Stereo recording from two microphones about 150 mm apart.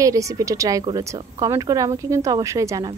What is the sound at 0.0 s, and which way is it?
A woman's voice, 20° right (ahead or behind).